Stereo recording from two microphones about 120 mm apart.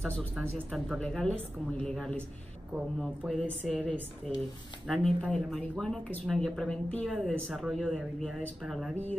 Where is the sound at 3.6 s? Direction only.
5° left (ahead or behind).